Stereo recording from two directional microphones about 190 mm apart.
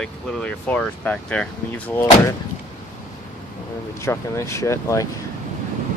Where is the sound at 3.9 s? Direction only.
15° left (ahead or behind).